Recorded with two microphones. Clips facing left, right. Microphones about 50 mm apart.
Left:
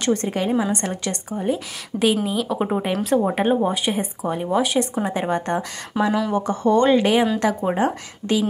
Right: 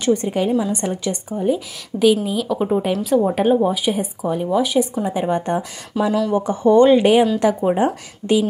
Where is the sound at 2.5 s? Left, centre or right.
Left.